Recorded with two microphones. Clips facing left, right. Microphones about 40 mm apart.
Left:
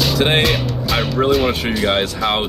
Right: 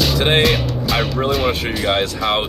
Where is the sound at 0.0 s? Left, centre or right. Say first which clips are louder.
Even; centre.